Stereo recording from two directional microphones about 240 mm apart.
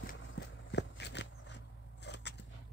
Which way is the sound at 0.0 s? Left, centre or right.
Left.